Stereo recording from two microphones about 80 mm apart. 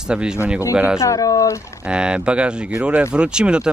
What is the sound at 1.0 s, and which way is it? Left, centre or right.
Speech, left.